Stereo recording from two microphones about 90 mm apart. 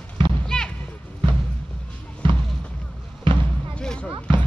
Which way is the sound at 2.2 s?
65° right (ahead or behind).